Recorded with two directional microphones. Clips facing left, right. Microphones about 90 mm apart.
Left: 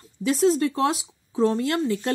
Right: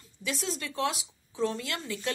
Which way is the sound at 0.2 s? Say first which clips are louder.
Left 14 dB; 35° left (ahead or behind).